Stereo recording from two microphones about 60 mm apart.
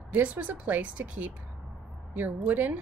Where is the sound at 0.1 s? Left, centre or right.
Right.